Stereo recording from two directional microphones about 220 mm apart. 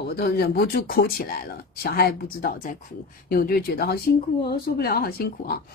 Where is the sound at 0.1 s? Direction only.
45° left (ahead or behind).